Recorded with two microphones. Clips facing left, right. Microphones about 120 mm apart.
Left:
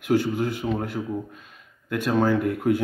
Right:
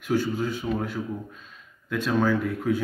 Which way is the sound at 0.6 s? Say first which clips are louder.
Left 1 dB; 20° left (ahead or behind).